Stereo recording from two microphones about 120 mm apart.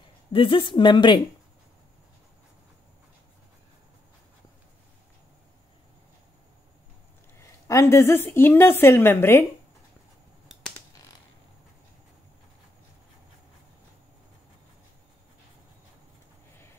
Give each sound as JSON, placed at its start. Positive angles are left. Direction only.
{"t": 0.0, "sound": "speech", "side_deg": 45}
{"t": 7.3, "sound": "a woman's voice", "side_deg": 25}